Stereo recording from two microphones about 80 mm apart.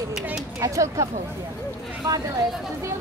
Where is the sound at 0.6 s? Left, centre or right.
Right.